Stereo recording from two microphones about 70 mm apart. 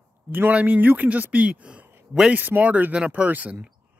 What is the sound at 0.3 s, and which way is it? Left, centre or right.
Speech, right.